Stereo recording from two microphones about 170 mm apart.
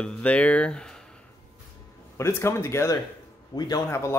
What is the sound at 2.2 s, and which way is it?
A man's voice, 15° left (ahead or behind).